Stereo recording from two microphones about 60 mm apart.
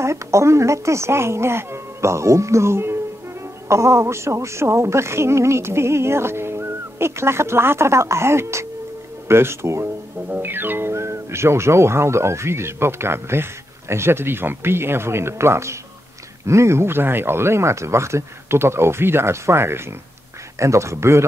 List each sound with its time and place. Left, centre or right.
0.0 s speech: right
10.3 s speech: right
20.5 s speech: right